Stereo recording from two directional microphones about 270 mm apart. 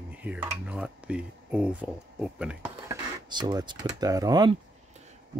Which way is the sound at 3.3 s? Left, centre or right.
Centre.